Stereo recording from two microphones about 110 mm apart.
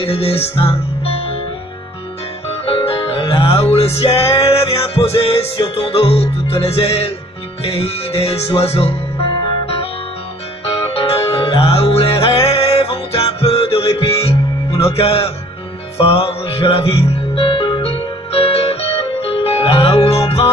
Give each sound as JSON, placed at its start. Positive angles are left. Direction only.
{"t": 0.0, "sound": "music", "side_deg": 65}
{"t": 2.7, "sound": "music", "side_deg": 60}
{"t": 10.9, "sound": "music", "side_deg": 60}
{"t": 14.9, "sound": "a man's voice", "side_deg": 65}
{"t": 16.0, "sound": "music", "side_deg": 55}